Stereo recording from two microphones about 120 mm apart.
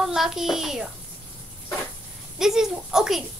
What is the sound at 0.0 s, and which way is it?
Speech, 5° right (ahead or behind).